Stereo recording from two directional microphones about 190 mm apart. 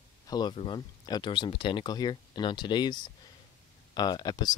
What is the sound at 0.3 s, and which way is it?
Speech, 25° left (ahead or behind).